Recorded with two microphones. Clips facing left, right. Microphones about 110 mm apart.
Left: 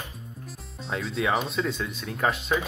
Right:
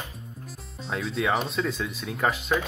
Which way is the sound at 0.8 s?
Centre (ahead or behind).